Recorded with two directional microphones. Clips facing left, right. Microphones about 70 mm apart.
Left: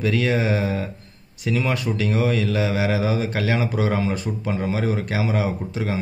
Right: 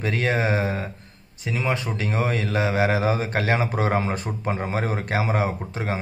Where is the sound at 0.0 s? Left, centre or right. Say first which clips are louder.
Left 2 dB; right.